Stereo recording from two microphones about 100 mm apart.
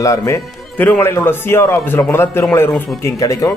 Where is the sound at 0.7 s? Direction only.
20° left (ahead or behind).